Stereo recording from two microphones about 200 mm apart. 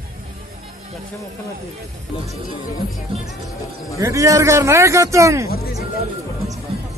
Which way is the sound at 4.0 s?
15° right (ahead or behind).